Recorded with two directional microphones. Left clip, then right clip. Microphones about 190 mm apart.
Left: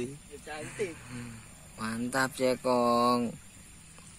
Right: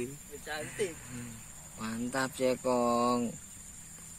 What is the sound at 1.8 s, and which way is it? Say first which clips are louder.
Speech: left 4 dB; 10° left (ahead or behind).